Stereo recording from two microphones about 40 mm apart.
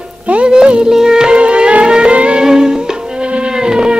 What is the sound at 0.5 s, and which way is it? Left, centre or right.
Music, right.